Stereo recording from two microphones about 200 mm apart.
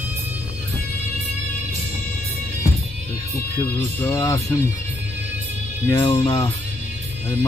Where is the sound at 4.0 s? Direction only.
15° left (ahead or behind).